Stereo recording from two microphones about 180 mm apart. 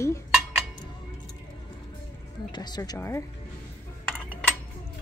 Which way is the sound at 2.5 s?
25° left (ahead or behind).